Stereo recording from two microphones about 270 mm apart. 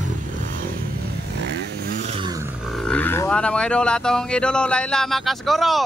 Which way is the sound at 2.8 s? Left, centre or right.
Centre.